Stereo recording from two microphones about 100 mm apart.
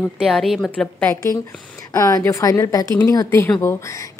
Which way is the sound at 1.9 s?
30° left (ahead or behind).